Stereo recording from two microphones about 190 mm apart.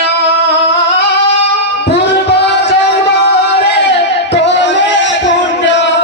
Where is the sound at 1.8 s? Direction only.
65° left (ahead or behind).